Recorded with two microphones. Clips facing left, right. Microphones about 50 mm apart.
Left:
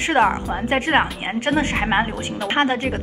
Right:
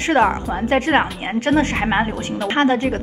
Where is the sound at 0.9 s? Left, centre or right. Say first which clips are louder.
Even; centre.